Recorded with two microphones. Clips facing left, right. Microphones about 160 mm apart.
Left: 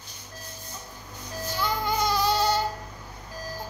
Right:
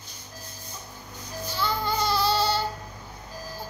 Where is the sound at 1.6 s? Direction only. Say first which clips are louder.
Even; 15° left (ahead or behind).